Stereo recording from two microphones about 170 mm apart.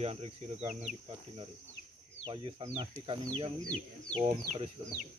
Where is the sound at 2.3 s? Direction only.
30° right (ahead or behind).